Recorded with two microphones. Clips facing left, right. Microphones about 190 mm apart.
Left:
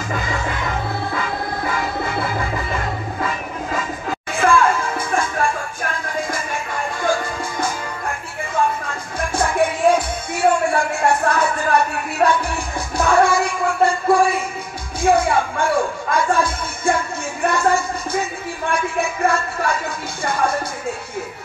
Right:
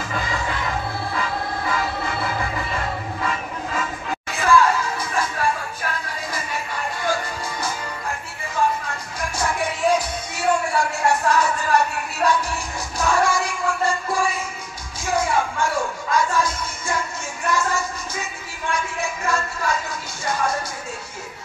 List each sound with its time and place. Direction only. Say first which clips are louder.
4.4 s music: left 1 dB; 50° left (ahead or behind)
9.3 s music: left 6 dB; 55° left (ahead or behind)